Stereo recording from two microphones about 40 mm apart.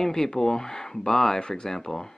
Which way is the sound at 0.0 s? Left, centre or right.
Centre.